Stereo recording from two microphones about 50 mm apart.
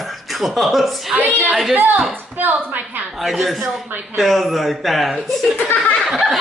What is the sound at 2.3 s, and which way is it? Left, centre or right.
Speech, right.